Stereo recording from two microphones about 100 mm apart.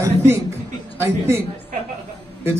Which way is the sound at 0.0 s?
25° right (ahead or behind).